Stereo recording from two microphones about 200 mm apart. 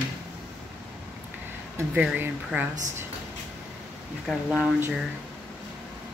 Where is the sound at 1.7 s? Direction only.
10° right (ahead or behind).